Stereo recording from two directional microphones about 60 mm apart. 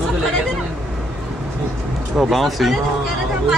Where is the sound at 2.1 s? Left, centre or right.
Centre.